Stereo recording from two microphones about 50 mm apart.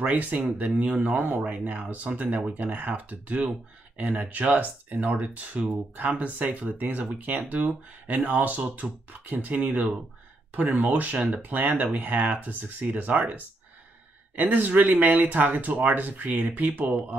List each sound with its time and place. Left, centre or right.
0.0 s speech: right